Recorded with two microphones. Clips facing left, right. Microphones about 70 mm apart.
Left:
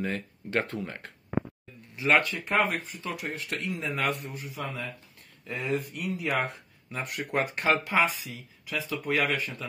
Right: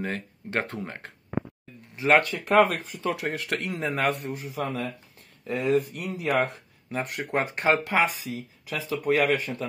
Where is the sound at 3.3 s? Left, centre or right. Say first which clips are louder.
Right 5 dB; right.